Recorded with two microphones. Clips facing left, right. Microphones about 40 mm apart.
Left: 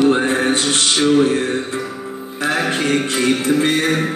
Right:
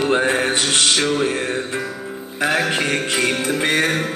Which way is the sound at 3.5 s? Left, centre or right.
Right.